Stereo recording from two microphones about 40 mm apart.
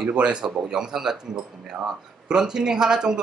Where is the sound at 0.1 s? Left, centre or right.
Right.